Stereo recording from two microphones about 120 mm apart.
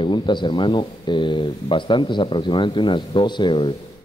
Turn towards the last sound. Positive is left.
turn(degrees=55)  # may be behind; listen again after turning